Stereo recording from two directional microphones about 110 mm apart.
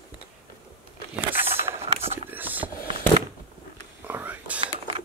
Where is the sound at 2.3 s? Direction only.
15° right (ahead or behind).